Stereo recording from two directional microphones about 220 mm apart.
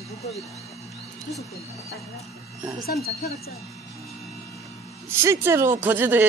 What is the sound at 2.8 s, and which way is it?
Speech, 45° left (ahead or behind).